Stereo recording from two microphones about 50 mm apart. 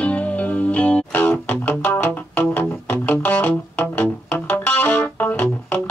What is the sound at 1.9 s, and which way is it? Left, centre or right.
Music, left.